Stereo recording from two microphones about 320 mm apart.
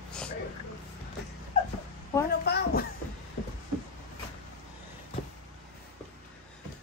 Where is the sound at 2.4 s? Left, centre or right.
Left.